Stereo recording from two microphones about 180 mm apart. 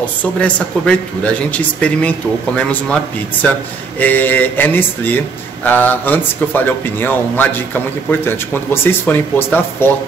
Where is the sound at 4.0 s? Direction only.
10° left (ahead or behind).